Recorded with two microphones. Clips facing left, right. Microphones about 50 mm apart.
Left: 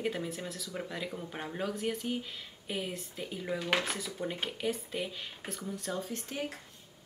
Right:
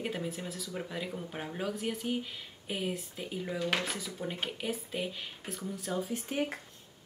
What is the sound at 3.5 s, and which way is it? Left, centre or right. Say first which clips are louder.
Speech: left 1 dB; centre.